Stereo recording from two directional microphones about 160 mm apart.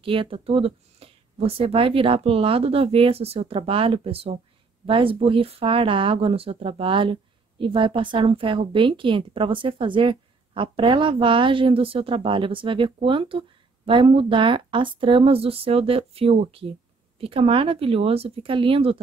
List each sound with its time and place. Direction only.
0.0 s speech: 35° right (ahead or behind)